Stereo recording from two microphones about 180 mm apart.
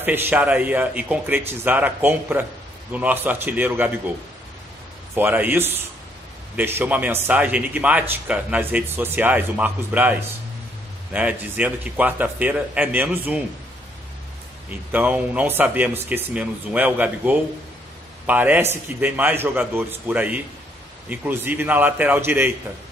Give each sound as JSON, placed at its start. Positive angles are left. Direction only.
{"t": 0.0, "sound": "speech", "side_deg": -10}
{"t": 5.1, "sound": "speech", "side_deg": -10}
{"t": 11.1, "sound": "speech", "side_deg": -5}
{"t": 14.7, "sound": "speech", "side_deg": -10}